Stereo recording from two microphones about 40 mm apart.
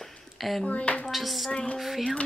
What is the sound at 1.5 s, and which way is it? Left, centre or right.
Speech, left.